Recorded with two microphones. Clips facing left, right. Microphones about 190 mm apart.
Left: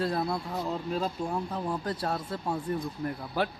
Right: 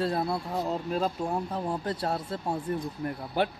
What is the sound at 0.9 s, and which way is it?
Speech, 40° right (ahead or behind).